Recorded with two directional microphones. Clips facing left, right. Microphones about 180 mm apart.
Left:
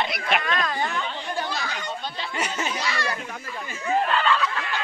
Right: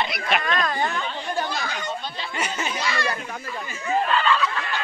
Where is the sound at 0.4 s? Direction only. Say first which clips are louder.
Right 2 dB; 45° right (ahead or behind).